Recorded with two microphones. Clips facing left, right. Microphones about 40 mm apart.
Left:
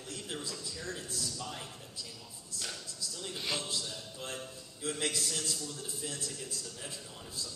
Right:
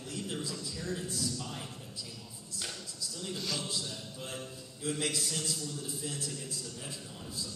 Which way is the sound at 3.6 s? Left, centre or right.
Centre.